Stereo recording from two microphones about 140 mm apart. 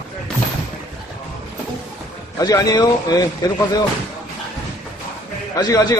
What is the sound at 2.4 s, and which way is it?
Speech, 25° left (ahead or behind).